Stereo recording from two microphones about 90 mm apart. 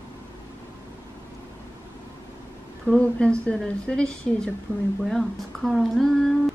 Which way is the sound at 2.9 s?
10° left (ahead or behind).